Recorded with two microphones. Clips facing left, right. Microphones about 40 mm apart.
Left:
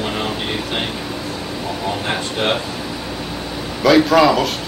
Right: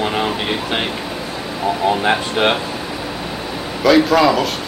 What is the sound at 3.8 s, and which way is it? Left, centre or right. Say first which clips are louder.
Speech: even; centre.